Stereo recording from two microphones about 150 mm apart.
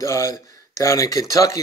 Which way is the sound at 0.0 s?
20° left (ahead or behind).